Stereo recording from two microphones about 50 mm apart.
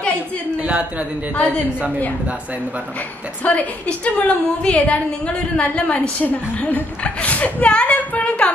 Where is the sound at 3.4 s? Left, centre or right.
Left.